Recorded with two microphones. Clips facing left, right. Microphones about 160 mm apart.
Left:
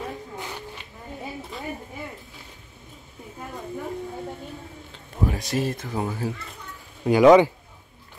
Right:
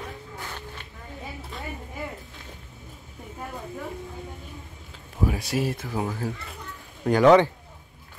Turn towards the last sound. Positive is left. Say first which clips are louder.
# left 3 dB
turn(degrees=10)  # may be behind; listen again after turning